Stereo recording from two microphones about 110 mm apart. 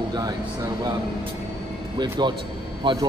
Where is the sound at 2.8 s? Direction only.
45° right (ahead or behind).